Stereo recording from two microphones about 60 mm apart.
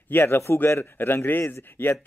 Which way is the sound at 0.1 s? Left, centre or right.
Left.